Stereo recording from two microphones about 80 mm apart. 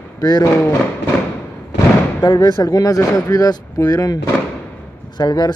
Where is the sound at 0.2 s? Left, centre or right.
Left.